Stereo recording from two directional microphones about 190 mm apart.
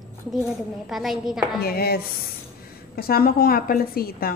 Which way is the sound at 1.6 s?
55° left (ahead or behind).